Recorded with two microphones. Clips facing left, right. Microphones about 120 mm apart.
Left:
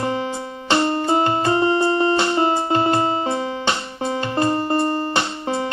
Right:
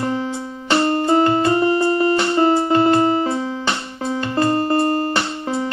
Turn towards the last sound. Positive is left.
turn(degrees=25)  # may be behind; listen again after turning